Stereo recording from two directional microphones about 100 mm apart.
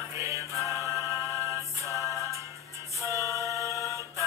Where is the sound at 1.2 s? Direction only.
35° left (ahead or behind).